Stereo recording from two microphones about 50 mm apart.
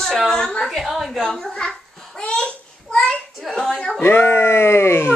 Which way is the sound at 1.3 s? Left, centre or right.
Centre.